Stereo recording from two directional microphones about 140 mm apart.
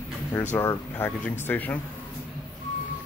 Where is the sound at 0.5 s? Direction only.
15° left (ahead or behind).